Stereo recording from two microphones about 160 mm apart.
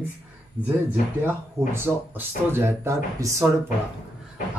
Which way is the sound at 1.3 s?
15° right (ahead or behind).